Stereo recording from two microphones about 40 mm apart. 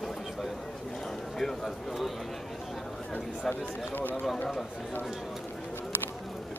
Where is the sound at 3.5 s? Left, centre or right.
Left.